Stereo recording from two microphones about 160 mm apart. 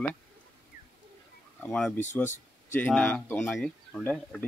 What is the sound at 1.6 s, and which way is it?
Speech, 5° left (ahead or behind).